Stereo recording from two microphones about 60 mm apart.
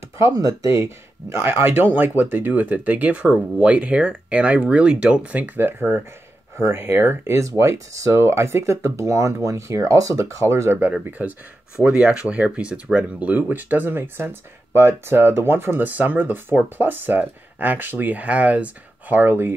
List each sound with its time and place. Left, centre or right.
0.2 s speech: right
0.7 s speech: right
7.4 s speech: right
10.9 s speech: right